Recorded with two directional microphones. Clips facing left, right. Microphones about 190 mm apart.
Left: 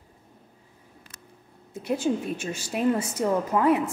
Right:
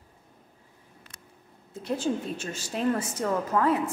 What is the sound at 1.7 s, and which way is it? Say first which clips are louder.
A woman's voice: left 3 dB; 15° left (ahead or behind).